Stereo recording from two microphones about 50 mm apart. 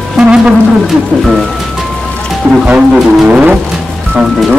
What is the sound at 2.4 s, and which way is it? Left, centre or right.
Speech, right.